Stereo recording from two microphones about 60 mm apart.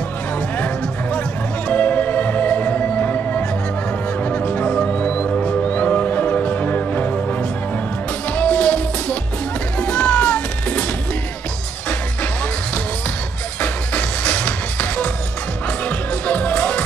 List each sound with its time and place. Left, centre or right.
1.7 s music: left
8.4 s music: left
13.6 s music: left
16.3 s music: left